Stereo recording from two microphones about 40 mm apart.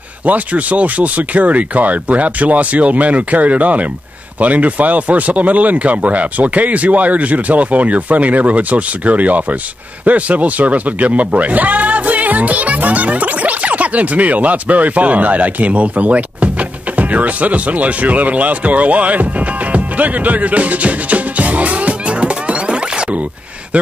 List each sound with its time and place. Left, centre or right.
0.2 s speech: right
19.7 s music: right